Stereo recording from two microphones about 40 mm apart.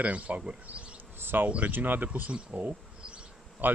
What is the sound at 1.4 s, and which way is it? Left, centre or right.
Speech, right.